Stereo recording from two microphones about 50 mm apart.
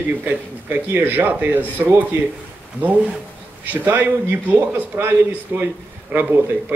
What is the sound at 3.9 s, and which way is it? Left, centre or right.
A man's voice, right.